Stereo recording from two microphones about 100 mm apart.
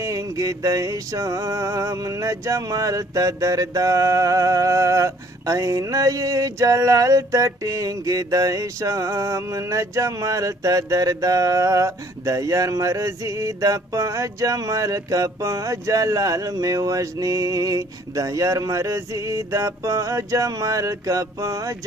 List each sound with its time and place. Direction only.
0.0 s music: 30° right (ahead or behind)